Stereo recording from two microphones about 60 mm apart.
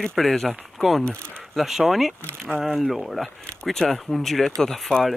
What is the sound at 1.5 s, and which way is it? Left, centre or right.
Speech, centre.